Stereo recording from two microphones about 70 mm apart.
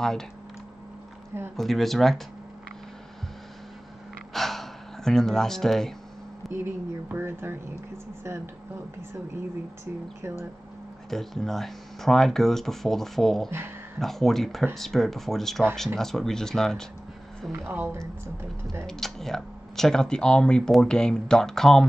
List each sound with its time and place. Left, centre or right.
1.6 s speech: centre
4.3 s gasp: centre
6.5 s speech: right
11.1 s speech: centre
17.5 s speech: right
18.9 s speech: centre